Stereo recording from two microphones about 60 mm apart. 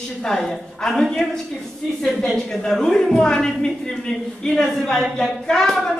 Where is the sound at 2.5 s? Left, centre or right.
Centre.